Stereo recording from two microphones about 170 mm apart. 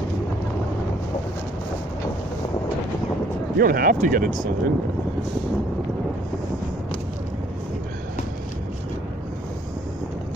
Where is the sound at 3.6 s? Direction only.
55° right (ahead or behind).